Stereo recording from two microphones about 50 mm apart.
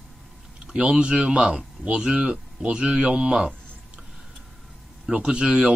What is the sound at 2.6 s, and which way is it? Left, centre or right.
Speech, right.